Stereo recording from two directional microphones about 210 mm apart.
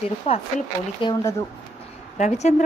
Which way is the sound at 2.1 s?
35° left (ahead or behind).